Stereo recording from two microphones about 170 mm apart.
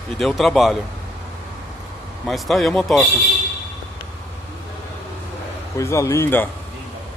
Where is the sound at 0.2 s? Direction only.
Centre (ahead or behind).